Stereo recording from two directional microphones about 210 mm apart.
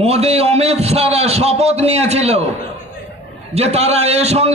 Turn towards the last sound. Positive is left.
turn(degrees=-30)  # may be behind; listen again after turning